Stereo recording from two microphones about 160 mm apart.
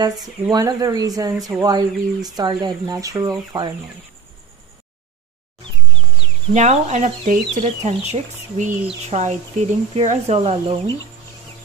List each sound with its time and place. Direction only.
0.0 s speech: 25° right (ahead or behind)
6.5 s speech: 45° right (ahead or behind)